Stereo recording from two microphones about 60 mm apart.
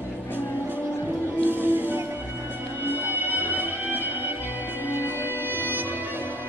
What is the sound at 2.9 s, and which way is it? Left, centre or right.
Music, right.